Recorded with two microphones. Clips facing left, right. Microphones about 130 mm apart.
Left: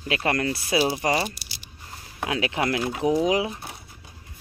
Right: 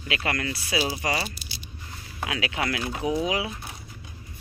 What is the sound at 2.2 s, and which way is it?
Speech, 30° left (ahead or behind).